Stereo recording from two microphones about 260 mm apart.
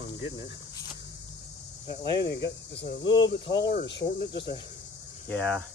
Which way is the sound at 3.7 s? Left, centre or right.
Left.